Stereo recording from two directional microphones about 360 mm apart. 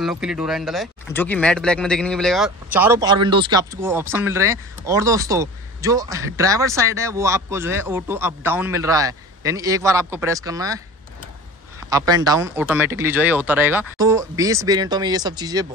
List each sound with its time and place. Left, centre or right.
0.0 s speech: centre
11.9 s speech: centre